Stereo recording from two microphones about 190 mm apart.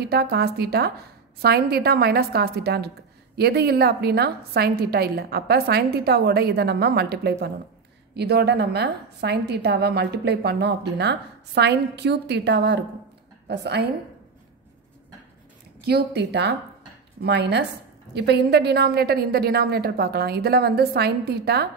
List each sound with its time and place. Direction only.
0.0 s a woman's voice: 55° right (ahead or behind)
15.8 s a woman's voice: 55° right (ahead or behind)